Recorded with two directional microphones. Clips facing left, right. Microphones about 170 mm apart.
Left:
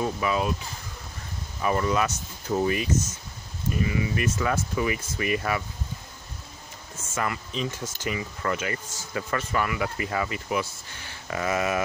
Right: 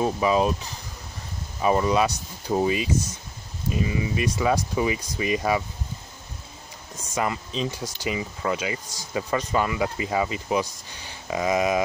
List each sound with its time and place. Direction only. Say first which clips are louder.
0.0 s speech: right 5 dB; 25° right (ahead or behind)
1.6 s speech: right 4 dB; 20° right (ahead or behind)
7.0 s speech: right 3 dB; 20° right (ahead or behind)